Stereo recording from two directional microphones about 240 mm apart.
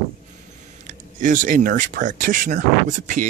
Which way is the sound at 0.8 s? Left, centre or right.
Right.